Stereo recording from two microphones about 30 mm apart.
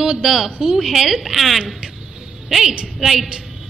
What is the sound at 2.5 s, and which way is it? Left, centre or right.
Speech, centre.